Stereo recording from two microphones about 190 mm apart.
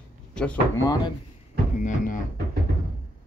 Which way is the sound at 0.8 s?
20° left (ahead or behind).